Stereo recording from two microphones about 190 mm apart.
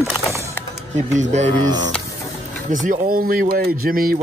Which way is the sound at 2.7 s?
45° right (ahead or behind).